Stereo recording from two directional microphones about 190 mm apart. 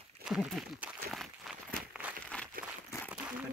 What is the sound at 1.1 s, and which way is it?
Walk, centre (ahead or behind).